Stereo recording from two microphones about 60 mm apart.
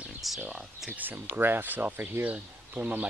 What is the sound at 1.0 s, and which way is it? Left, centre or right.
Speech, right.